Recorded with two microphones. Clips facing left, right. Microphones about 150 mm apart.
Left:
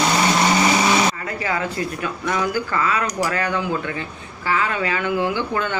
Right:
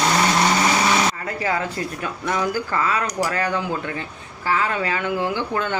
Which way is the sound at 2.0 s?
35° right (ahead or behind).